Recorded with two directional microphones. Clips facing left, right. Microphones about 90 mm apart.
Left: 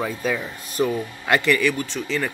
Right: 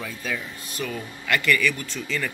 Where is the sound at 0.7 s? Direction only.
30° left (ahead or behind).